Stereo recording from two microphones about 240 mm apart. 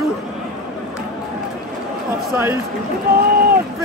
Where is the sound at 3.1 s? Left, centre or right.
Right.